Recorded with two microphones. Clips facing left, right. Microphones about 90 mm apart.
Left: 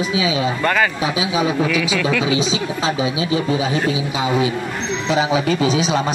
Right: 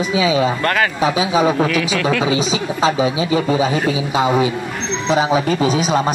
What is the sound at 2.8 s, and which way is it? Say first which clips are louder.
Speech: right 5 dB; 35° right (ahead or behind).